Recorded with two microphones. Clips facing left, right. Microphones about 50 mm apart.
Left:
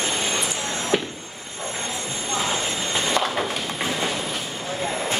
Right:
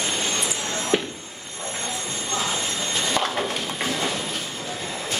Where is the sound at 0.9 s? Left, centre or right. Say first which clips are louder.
Even; centre.